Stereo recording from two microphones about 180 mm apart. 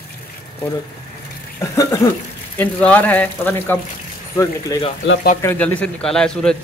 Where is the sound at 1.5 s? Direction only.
15° left (ahead or behind).